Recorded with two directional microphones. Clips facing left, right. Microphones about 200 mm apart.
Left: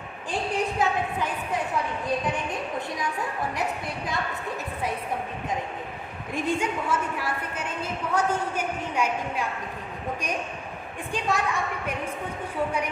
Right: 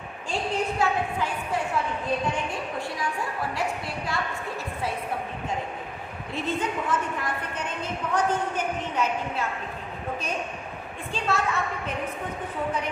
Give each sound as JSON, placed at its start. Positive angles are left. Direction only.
{"t": 0.3, "sound": "a sound", "side_deg": 20}
{"t": 2.3, "sound": "a woman's voice", "side_deg": 20}
{"t": 6.3, "sound": "a woman's voice", "side_deg": 15}
{"t": 11.2, "sound": "a woman's voice", "side_deg": 15}